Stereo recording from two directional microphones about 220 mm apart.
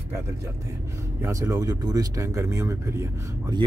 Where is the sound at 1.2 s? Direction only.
15° right (ahead or behind).